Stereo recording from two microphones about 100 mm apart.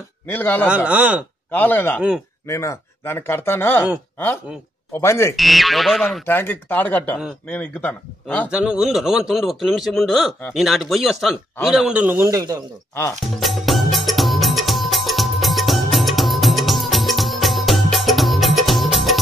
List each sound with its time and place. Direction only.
0.3 s speech: 20° left (ahead or behind)
0.7 s speech: 15° right (ahead or behind)
1.5 s speech: 20° left (ahead or behind)
2.0 s speech: 10° right (ahead or behind)
2.4 s speech: 30° left (ahead or behind)
5.0 s speech: 25° left (ahead or behind)
5.3 s a man's voice: centre (ahead or behind)
6.2 s speech: 20° left (ahead or behind)
8.5 s a man's voice: 10° right (ahead or behind)
12.2 s speech: 35° right (ahead or behind)
13.4 s music: centre (ahead or behind)